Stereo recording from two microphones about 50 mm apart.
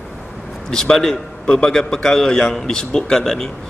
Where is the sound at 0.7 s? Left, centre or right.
Centre.